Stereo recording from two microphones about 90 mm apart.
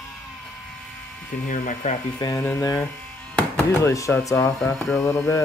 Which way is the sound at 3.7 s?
35° left (ahead or behind).